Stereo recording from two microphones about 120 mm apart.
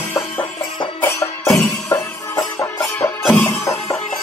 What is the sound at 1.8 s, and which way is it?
Music, 25° left (ahead or behind).